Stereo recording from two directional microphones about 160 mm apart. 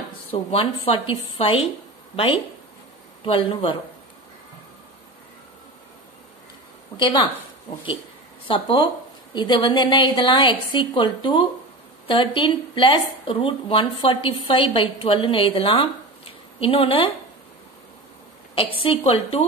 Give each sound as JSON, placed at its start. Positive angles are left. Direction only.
{"t": 0.3, "sound": "speech", "side_deg": 35}
{"t": 8.5, "sound": "a woman's voice", "side_deg": 30}
{"t": 18.8, "sound": "speech", "side_deg": 35}